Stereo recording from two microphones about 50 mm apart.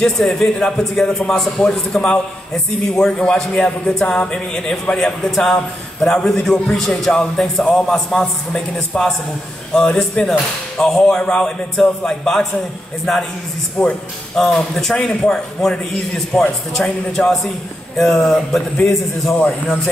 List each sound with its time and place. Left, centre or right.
0.0 s a man's voice: centre
13.8 s speech: left
14.3 s a man's voice: centre